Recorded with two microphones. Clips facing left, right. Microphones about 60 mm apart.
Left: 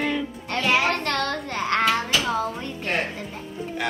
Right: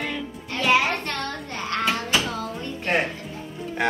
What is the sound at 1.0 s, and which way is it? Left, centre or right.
Speech, left.